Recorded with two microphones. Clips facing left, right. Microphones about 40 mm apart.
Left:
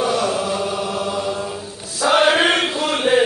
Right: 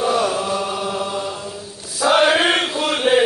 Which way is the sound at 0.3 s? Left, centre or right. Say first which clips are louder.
Even; centre.